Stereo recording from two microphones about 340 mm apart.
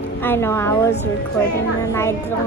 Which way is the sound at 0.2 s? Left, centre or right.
Centre.